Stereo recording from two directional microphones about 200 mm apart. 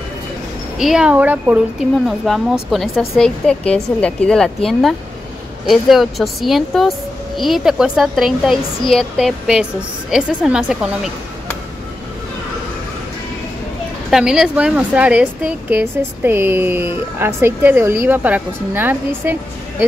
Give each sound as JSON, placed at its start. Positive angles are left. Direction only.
{"t": 0.7, "sound": "speech", "side_deg": -5}
{"t": 14.1, "sound": "speech", "side_deg": -5}